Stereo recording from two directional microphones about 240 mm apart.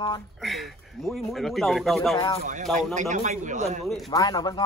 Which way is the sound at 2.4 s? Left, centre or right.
Right.